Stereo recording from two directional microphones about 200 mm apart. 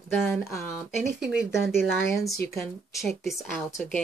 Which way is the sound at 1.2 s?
55° right (ahead or behind).